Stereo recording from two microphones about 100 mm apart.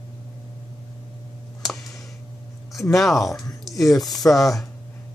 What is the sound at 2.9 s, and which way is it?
Speech, centre (ahead or behind).